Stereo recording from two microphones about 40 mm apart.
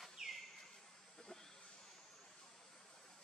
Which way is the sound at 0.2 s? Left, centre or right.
Centre.